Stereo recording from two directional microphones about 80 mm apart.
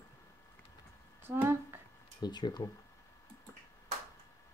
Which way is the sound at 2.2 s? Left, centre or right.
Left.